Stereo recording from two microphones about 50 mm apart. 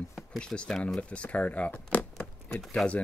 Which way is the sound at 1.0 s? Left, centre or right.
Left.